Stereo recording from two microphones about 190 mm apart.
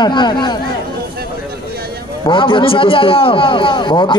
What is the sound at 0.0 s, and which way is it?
Speech, 25° left (ahead or behind).